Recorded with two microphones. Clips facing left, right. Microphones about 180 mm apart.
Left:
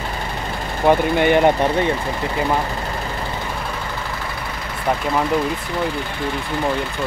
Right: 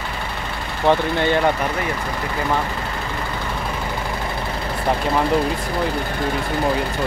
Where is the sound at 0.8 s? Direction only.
15° left (ahead or behind).